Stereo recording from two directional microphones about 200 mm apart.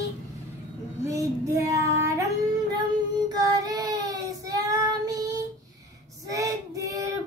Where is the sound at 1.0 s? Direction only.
15° right (ahead or behind).